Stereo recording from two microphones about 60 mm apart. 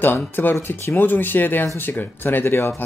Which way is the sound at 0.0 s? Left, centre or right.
Left.